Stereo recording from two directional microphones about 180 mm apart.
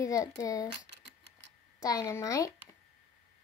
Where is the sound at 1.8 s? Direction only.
20° left (ahead or behind).